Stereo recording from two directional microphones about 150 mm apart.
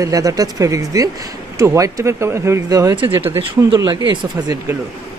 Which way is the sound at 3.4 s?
30° right (ahead or behind).